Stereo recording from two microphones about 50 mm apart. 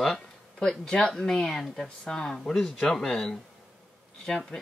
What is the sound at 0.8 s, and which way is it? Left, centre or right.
Speech, centre.